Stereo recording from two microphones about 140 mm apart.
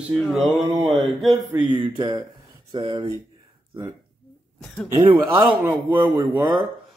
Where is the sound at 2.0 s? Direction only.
35° right (ahead or behind).